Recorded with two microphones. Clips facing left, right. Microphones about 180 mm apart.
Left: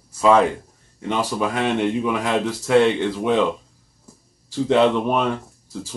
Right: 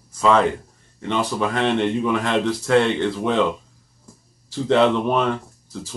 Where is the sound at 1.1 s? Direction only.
10° left (ahead or behind).